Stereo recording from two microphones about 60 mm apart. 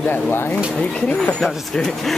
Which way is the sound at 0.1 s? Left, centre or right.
Left.